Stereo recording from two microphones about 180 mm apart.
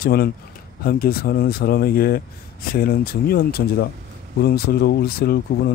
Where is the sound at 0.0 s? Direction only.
60° left (ahead or behind).